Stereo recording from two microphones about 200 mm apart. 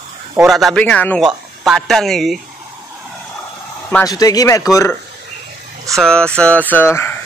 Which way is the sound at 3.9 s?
15° left (ahead or behind).